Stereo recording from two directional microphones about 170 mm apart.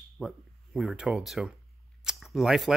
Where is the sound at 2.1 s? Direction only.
Centre (ahead or behind).